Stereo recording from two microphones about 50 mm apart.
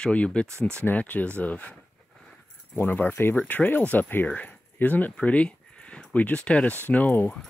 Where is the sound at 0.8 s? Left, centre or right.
Left.